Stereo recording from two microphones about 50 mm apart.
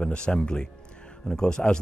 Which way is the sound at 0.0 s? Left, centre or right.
Centre.